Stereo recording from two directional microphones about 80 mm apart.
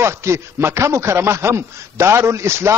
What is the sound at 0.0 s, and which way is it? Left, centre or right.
A man's voice, right.